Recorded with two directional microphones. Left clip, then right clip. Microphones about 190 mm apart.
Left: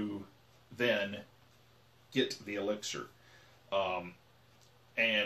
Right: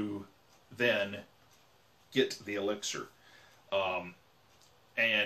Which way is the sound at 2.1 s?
10° left (ahead or behind).